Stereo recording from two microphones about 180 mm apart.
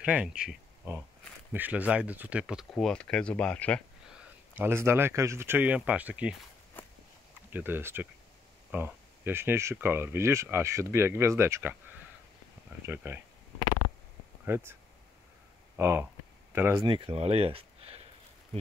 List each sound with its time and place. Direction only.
0.0 s speech: 5° right (ahead or behind)
2.7 s speech: 5° left (ahead or behind)
4.6 s speech: 15° right (ahead or behind)
7.5 s speech: 10° right (ahead or behind)
14.4 s speech: 10° right (ahead or behind)
16.8 s speech: 25° right (ahead or behind)